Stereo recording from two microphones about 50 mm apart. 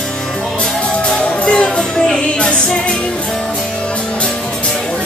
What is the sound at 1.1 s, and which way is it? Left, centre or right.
Music, left.